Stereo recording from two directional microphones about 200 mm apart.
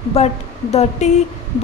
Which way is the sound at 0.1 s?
30° left (ahead or behind).